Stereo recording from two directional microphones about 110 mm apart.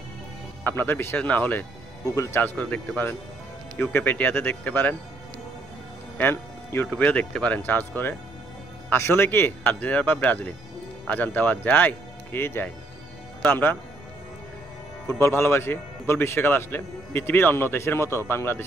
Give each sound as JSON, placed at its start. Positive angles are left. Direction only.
{"t": 0.7, "sound": "a man's voice", "side_deg": 20}
{"t": 2.5, "sound": "speech", "side_deg": 10}
{"t": 6.1, "sound": "music", "side_deg": 20}
{"t": 6.9, "sound": "speech", "side_deg": 10}
{"t": 15.1, "sound": "a man's voice", "side_deg": 25}